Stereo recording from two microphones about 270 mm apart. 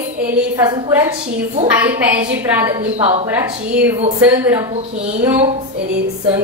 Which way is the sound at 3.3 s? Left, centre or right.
Centre.